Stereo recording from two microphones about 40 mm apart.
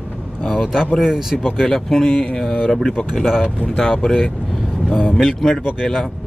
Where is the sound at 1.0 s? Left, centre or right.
Centre.